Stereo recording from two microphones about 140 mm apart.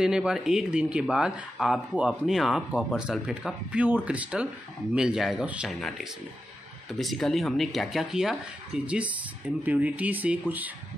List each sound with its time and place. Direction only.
0.0 s speech: 5° right (ahead or behind)
5.8 s speech: 5° left (ahead or behind)